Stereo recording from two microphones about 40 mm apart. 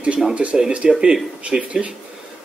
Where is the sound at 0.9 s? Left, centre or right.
Centre.